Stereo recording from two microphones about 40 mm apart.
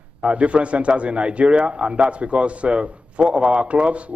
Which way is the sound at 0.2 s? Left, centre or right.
Right.